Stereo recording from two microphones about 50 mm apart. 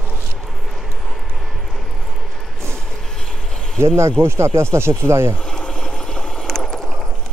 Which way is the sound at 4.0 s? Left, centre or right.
Right.